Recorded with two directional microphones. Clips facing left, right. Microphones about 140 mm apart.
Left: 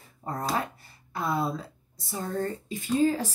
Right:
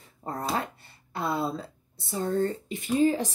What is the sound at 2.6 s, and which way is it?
Speech, 20° right (ahead or behind).